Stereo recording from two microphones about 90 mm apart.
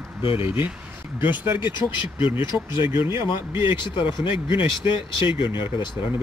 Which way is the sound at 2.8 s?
30° right (ahead or behind).